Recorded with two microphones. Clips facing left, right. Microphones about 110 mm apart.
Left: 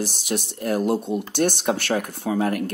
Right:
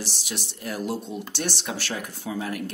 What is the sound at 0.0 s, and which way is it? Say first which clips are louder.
Speech: left 8 dB; 50° left (ahead or behind).